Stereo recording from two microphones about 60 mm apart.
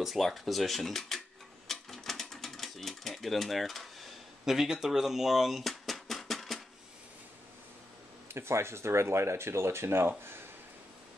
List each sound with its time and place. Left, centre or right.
0.0 s speech: centre
1.7 s typewriter: centre
8.3 s speech: right